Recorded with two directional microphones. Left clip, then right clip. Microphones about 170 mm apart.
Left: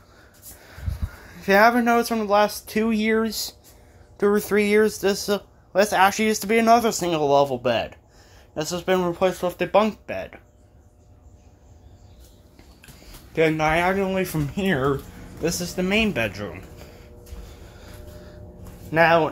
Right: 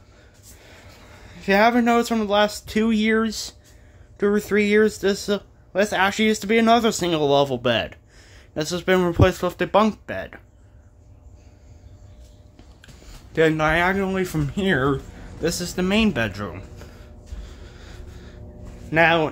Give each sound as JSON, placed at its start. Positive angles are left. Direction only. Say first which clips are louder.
{"t": 1.4, "sound": "speech", "louder": "left 1 dB", "side_deg": -10}
{"t": 13.0, "sound": "speech", "louder": "right 2 dB", "side_deg": -20}
{"t": 18.9, "sound": "speech", "louder": "even", "side_deg": -20}